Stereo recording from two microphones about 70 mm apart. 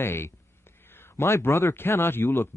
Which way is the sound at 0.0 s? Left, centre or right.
Left.